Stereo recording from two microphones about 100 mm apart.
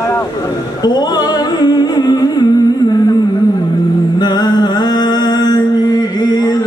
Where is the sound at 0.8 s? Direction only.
45° left (ahead or behind).